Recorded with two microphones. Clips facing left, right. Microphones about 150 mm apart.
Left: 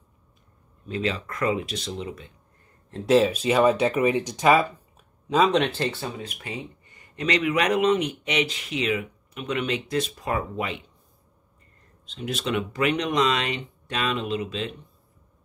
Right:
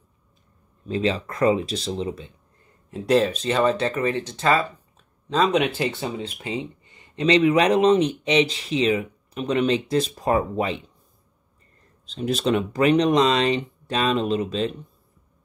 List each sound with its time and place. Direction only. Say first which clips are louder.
0.8 s speech: right 4 dB; 30° right (ahead or behind)
2.9 s speech: even; centre (ahead or behind)
5.3 s speech: even; centre (ahead or behind); by 10.8 s 35° right (ahead or behind)
12.1 s speech: right 6 dB; 35° right (ahead or behind)